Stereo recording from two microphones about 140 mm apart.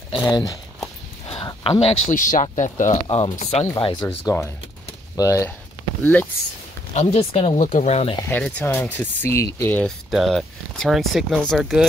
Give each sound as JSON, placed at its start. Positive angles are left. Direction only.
{"t": 0.1, "sound": "speech", "side_deg": 30}
{"t": 1.2, "sound": "a sound", "side_deg": 35}
{"t": 2.0, "sound": "speech", "side_deg": 70}
{"t": 2.5, "sound": "speech", "side_deg": 60}
{"t": 3.1, "sound": "speech", "side_deg": 40}
{"t": 3.3, "sound": "speech", "side_deg": 50}
{"t": 3.7, "sound": "speech", "side_deg": 30}
{"t": 6.9, "sound": "speech", "side_deg": 45}
{"t": 7.6, "sound": "speech", "side_deg": 60}
{"t": 8.3, "sound": "speech", "side_deg": 10}